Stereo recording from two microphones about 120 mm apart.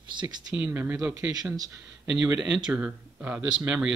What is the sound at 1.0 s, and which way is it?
Speech, 25° right (ahead or behind).